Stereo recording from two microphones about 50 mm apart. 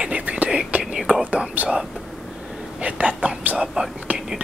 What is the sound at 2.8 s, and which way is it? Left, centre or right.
Speech, right.